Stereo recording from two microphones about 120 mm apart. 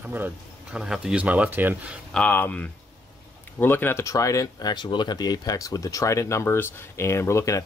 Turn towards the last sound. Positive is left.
turn(degrees=25)  # may be behind; listen again after turning